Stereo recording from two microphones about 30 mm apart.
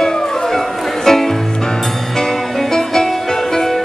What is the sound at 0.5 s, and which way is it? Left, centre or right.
Music, centre.